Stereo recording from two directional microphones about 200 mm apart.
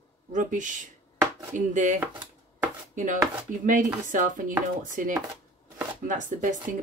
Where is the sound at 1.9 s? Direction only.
10° right (ahead or behind).